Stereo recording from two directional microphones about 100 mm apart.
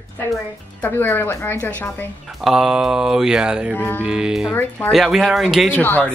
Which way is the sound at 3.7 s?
20° left (ahead or behind).